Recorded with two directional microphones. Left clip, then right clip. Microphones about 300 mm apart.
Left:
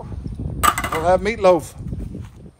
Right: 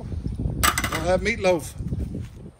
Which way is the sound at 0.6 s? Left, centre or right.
Left.